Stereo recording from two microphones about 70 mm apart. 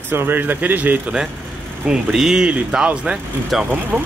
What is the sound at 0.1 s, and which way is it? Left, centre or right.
Speech, right.